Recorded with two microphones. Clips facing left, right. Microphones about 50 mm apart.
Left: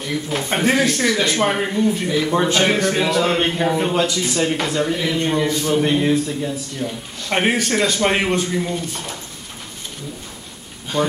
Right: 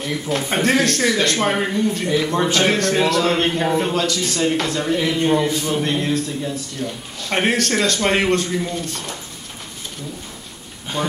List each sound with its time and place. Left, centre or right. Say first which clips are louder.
0.1 s a man's voice: even; centre
3.9 s a man's voice: left 2 dB; centre
5.5 s speech: left 2 dB; centre
5.8 s a man's voice: left 3 dB; centre
10.9 s speech: left 3 dB; centre